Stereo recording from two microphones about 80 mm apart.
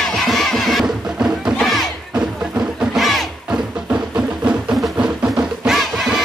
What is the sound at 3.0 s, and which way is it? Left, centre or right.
Music, centre.